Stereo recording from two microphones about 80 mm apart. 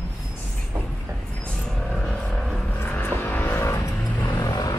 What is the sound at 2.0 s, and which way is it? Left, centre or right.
Vehicle, centre.